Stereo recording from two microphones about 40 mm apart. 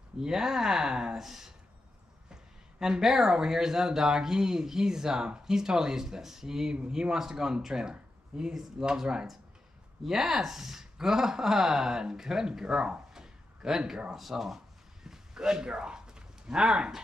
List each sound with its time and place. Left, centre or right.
0.2 s speech: centre
2.8 s speech: centre
15.0 s a sound: centre